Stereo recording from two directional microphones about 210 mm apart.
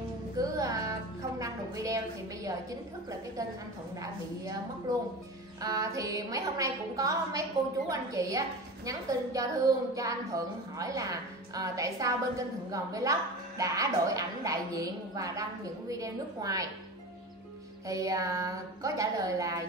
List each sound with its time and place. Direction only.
0.4 s music: 15° right (ahead or behind)
1.4 s a sound: 15° right (ahead or behind)
5.6 s a woman's voice: 15° right (ahead or behind)
17.8 s a woman's voice: 15° right (ahead or behind)